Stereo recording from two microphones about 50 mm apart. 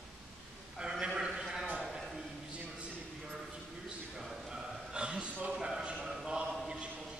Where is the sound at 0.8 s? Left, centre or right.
Centre.